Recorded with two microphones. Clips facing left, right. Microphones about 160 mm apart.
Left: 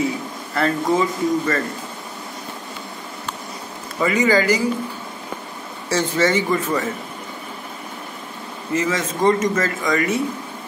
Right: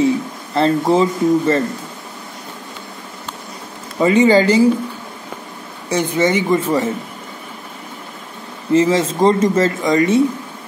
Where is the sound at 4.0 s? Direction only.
25° right (ahead or behind).